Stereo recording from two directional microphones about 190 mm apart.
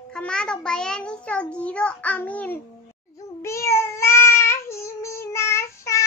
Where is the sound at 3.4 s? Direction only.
15° left (ahead or behind).